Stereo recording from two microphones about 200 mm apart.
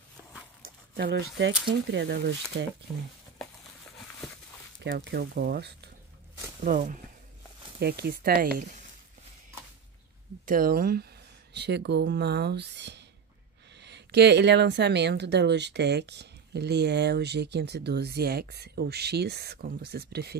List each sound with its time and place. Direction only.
0.9 s speech: 55° right (ahead or behind)
4.8 s speech: 50° right (ahead or behind)
6.6 s speech: 40° right (ahead or behind)
10.4 s speech: 45° right (ahead or behind)